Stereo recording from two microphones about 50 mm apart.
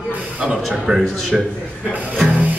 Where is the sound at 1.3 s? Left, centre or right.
Centre.